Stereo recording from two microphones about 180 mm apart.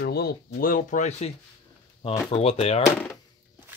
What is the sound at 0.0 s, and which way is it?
Speech, 60° left (ahead or behind).